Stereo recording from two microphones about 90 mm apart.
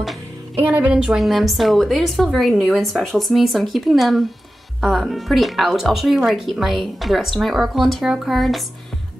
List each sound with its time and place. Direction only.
0.6 s speech: 15° right (ahead or behind)